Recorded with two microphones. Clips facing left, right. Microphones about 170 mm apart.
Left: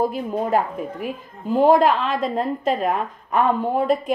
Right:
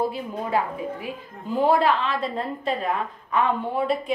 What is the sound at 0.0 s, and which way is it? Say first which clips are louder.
A woman's voice: left 5 dB; 45° left (ahead or behind).